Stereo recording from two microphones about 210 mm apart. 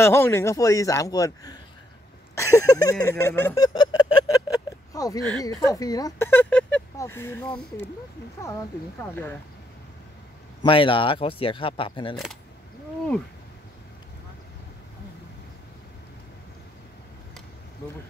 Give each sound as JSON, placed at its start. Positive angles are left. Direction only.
{"t": 0.0, "sound": "speech", "side_deg": 10}
{"t": 2.3, "sound": "a sound", "side_deg": 15}
{"t": 5.4, "sound": "speech", "side_deg": 15}
{"t": 9.1, "sound": "speech", "side_deg": 10}
{"t": 10.6, "sound": "speech", "side_deg": 25}